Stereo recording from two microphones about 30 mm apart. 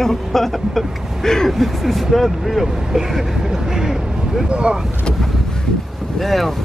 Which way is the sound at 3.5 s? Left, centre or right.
Centre.